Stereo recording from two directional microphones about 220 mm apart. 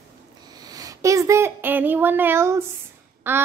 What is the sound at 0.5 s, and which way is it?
A woman's voice, 15° right (ahead or behind).